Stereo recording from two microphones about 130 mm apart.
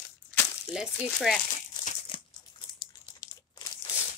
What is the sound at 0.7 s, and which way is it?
Speech, 5° right (ahead or behind).